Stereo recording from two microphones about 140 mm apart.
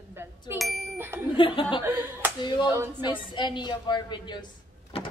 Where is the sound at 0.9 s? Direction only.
15° right (ahead or behind).